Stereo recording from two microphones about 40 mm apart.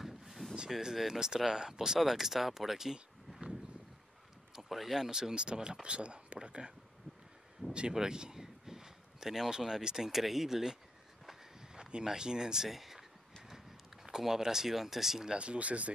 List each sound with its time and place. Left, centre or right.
0.0 s a sound: centre
0.7 s speech: centre
4.6 s speech: centre; by 6.7 s right
7.9 s speech: centre
12.6 s speech: centre
14.0 s speech: centre
15.3 s speech: right